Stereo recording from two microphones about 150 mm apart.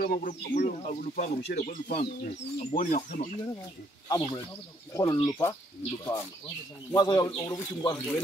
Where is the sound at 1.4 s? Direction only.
90° left.